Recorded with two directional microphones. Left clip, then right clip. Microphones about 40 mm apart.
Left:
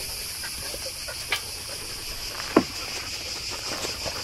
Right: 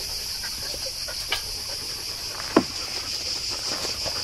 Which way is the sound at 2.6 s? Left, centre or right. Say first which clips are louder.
Even; right.